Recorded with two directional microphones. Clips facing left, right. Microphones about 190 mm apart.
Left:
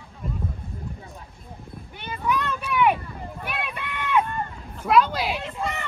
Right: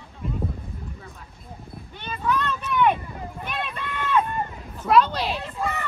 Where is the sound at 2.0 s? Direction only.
15° left (ahead or behind).